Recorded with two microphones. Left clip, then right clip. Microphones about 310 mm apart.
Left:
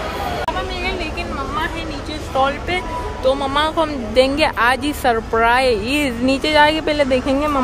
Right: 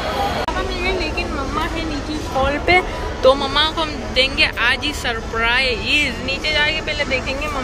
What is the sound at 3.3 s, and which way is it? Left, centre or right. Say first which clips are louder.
Speech: right 2 dB; centre.